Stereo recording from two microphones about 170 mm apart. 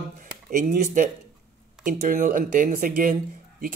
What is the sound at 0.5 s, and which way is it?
Speech, 50° right (ahead or behind).